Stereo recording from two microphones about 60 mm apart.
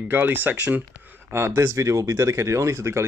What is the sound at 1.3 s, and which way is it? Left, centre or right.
Speech, right.